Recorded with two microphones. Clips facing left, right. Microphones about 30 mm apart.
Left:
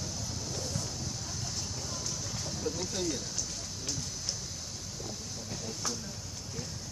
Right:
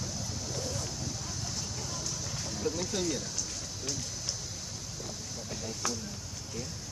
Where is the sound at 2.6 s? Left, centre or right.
Centre.